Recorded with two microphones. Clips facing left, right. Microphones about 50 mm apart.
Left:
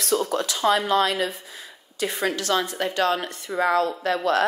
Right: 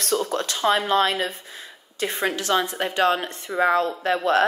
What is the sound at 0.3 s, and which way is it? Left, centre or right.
A woman's voice, right.